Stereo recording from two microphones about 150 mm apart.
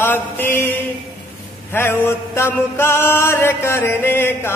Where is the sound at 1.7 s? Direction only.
15° left (ahead or behind).